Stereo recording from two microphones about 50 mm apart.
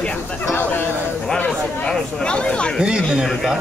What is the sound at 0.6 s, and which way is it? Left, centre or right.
Speech, left.